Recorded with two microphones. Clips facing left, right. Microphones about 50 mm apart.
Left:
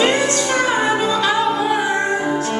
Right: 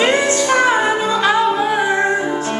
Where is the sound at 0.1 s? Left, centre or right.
Centre.